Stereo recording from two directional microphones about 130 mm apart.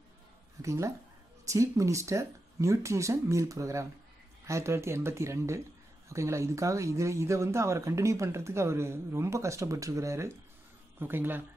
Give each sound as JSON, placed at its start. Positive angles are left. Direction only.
{"t": 0.6, "sound": "speech", "side_deg": -25}